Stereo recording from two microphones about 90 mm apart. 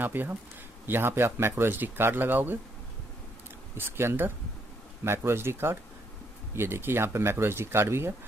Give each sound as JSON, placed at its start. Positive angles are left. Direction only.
{"t": 0.0, "sound": "speech", "side_deg": -20}
{"t": 3.7, "sound": "speech", "side_deg": -25}